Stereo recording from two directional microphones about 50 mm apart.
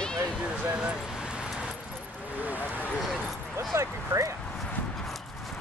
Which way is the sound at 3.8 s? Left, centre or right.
Right.